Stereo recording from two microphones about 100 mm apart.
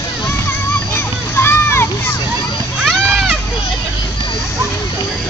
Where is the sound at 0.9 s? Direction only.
25° left (ahead or behind).